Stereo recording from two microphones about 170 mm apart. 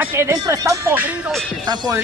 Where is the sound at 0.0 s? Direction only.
15° right (ahead or behind).